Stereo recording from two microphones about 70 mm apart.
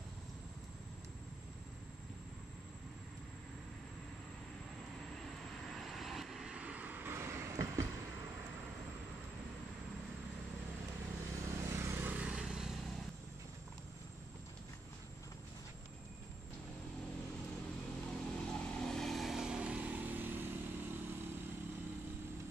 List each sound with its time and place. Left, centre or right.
5.1 s vehicle: centre; by 7.2 s right
7.2 s vehicle: right
11.1 s vehicle: right
12.2 s vehicle: centre
18.1 s vehicle: centre; by 21.6 s right